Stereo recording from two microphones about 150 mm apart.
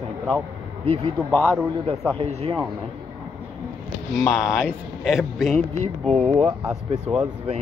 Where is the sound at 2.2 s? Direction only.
45° right (ahead or behind).